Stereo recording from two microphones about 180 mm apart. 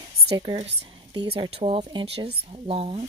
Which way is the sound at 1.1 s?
25° right (ahead or behind).